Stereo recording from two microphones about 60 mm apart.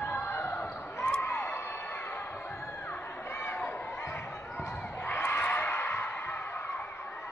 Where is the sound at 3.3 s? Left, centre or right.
Left.